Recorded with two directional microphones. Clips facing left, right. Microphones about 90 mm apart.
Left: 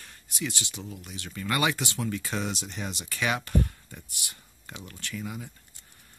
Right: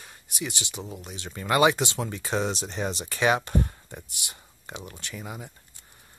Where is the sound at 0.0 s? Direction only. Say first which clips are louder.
Even; 20° right (ahead or behind).